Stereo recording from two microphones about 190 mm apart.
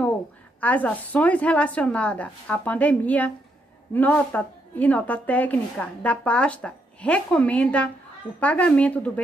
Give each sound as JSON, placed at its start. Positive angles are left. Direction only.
{"t": 0.6, "sound": "a woman's voice", "side_deg": 5}